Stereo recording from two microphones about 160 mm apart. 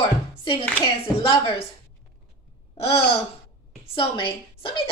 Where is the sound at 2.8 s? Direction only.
35° left (ahead or behind).